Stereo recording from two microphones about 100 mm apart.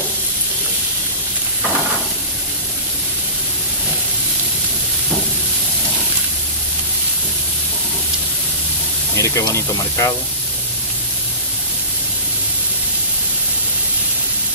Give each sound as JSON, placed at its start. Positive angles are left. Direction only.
{"t": 9.1, "sound": "speech", "side_deg": 30}